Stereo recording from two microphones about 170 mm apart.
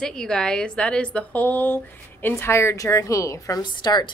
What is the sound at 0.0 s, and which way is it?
A woman's voice, 5° left (ahead or behind).